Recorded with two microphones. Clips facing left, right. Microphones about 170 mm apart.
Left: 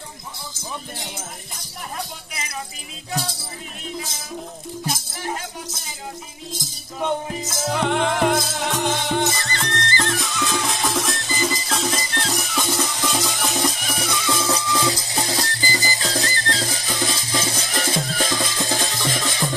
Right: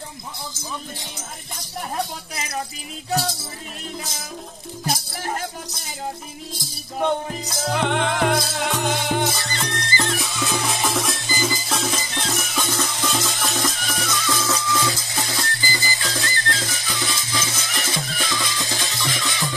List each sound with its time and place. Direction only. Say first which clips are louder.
7.4 s music: left 1 dB; centre (ahead or behind)
13.4 s music: left 2 dB; 15° left (ahead or behind); by 17.6 s 35° left (ahead or behind)
18.2 s music: left 3 dB; 50° left (ahead or behind)